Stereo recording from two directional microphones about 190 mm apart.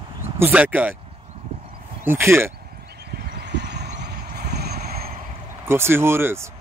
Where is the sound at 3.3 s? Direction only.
60° right (ahead or behind).